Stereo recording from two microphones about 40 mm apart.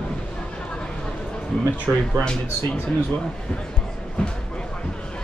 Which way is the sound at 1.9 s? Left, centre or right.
Right.